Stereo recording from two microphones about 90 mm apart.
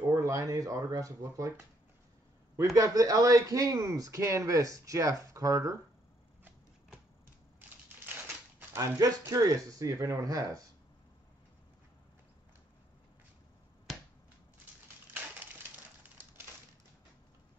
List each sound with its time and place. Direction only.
0.1 s speech: 35° right (ahead or behind)
2.5 s speech: 35° right (ahead or behind)
8.0 s typewriter: 20° right (ahead or behind)
8.8 s speech: 40° right (ahead or behind)
13.9 s finger snapping: centre (ahead or behind)